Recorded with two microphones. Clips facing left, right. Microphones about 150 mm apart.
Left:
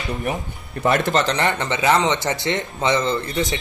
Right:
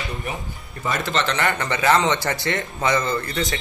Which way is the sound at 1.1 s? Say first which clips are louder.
Left 3 dB; 40° left (ahead or behind).